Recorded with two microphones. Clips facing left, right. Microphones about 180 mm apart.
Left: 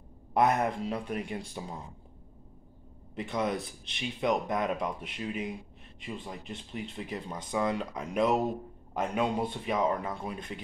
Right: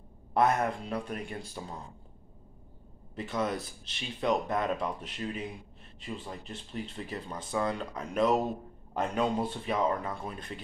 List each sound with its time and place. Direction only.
0.3 s speech: 15° left (ahead or behind)
3.2 s speech: 15° left (ahead or behind)